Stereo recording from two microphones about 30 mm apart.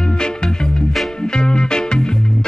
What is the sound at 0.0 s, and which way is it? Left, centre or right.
Music, left.